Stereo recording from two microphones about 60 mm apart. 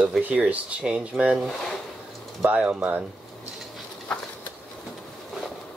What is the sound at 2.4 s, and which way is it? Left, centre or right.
Speech, right.